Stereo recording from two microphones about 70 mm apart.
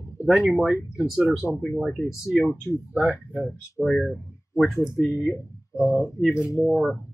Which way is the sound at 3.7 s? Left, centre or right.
Centre.